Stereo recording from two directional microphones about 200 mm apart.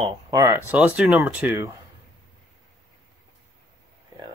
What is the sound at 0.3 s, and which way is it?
Speech, 15° right (ahead or behind).